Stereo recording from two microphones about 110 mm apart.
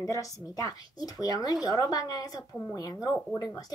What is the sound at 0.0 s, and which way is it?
Speech, 30° left (ahead or behind).